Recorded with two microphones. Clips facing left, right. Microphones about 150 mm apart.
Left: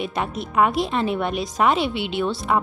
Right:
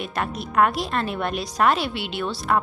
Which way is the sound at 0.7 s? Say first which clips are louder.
Left 4 dB; 20° left (ahead or behind).